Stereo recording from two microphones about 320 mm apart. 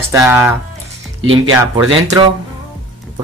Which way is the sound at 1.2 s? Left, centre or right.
Right.